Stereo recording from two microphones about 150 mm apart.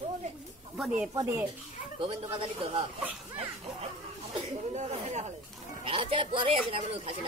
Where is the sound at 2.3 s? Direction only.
35° right (ahead or behind).